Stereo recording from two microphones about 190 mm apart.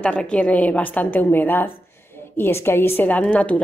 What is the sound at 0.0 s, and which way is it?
A woman's voice, 5° left (ahead or behind).